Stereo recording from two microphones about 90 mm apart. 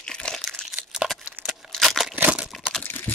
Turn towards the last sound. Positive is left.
turn(degrees=20)  # may be behind; listen again after turning